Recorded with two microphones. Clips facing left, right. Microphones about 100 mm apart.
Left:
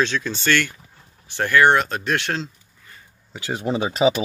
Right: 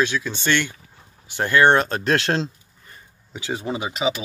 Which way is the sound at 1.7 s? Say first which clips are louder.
Right 2 dB; 35° right (ahead or behind).